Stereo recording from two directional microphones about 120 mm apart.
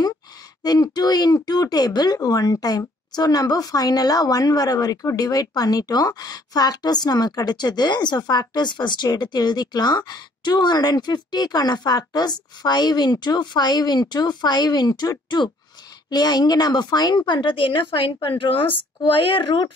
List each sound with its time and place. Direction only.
0.7 s speech: 35° left (ahead or behind)